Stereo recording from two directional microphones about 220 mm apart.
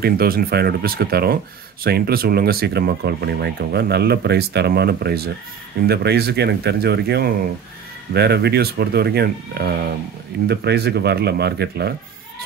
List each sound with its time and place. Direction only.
0.0 s speech: 45° right (ahead or behind)